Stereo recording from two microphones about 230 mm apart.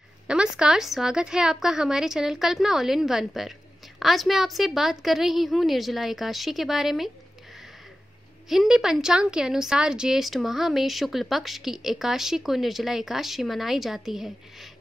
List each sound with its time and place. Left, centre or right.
0.3 s a woman's voice: centre
8.5 s a woman's voice: centre